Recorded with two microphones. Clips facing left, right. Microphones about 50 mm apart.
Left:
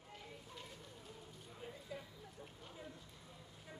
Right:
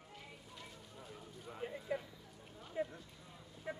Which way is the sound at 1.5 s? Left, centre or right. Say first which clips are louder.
Right 9 dB; right.